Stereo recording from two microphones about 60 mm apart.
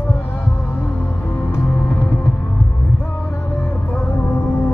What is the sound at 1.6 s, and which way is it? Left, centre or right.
Music, left.